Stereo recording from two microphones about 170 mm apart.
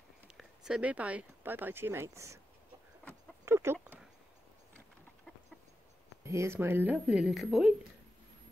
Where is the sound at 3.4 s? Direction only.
15° right (ahead or behind).